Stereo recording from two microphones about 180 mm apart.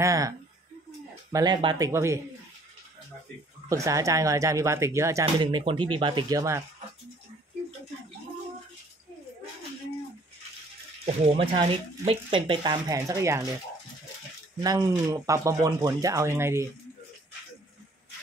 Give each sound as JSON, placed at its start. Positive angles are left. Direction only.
{"t": 0.0, "sound": "speech", "side_deg": -15}
{"t": 1.3, "sound": "speech", "side_deg": -25}
{"t": 1.9, "sound": "speech", "side_deg": -15}
{"t": 3.6, "sound": "speech", "side_deg": -20}
{"t": 5.2, "sound": "speech", "side_deg": -30}
{"t": 11.3, "sound": "speech", "side_deg": -30}
{"t": 14.6, "sound": "speech", "side_deg": -20}